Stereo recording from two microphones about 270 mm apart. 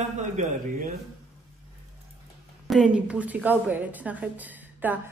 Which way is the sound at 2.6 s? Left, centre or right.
Centre.